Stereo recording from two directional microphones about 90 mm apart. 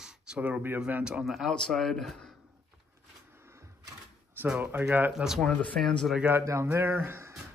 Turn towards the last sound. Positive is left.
turn(degrees=-25)  # may be behind; listen again after turning